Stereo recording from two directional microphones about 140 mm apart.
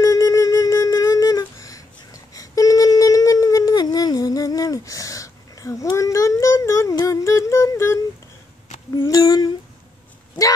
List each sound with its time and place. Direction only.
0.0 s humming: 25° left (ahead or behind)
2.3 s a sound: 25° left (ahead or behind)
8.9 s humming: 20° left (ahead or behind)